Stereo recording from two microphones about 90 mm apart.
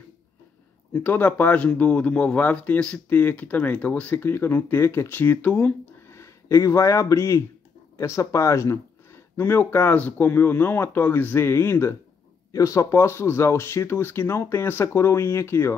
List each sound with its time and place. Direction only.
0.9 s speech: 20° left (ahead or behind)
6.0 s speech: 30° left (ahead or behind)